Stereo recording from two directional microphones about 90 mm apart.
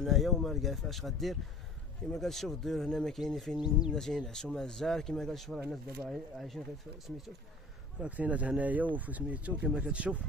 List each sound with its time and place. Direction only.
0.0 s speech: centre (ahead or behind)
3.9 s speech: 5° left (ahead or behind)
8.0 s speech: 15° right (ahead or behind)